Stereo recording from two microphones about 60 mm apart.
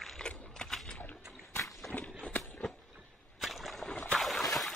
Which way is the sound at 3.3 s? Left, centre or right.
Centre.